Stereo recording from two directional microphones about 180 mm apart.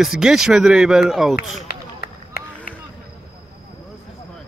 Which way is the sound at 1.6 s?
55° left (ahead or behind).